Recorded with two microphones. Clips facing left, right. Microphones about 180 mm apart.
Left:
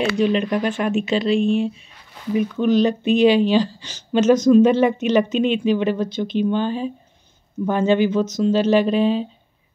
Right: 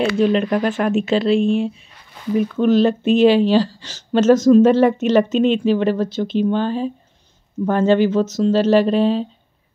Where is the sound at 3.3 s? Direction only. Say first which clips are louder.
Right 1 dB; 40° right (ahead or behind).